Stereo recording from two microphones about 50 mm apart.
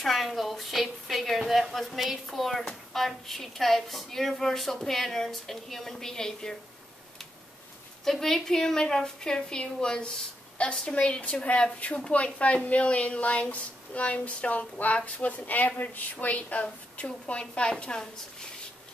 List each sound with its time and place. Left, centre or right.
0.0 s a woman's voice: centre
8.0 s a woman's voice: centre